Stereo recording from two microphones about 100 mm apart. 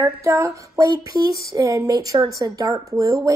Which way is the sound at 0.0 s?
30° right (ahead or behind).